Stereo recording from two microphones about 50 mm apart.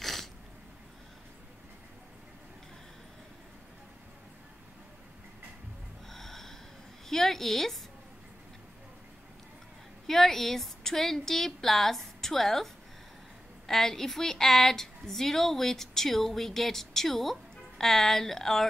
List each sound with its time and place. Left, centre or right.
0.0 s a sound: centre
6.0 s music: centre
7.1 s a woman's voice: centre
10.0 s a woman's voice: centre
13.7 s a woman's voice: centre